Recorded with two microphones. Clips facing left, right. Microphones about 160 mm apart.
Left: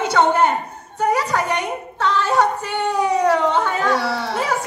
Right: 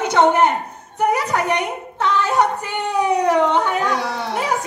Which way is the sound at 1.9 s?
15° right (ahead or behind).